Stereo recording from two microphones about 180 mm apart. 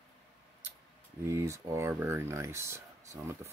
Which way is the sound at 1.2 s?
15° right (ahead or behind).